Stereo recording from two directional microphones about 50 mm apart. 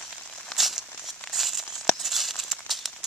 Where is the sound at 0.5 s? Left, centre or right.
Centre.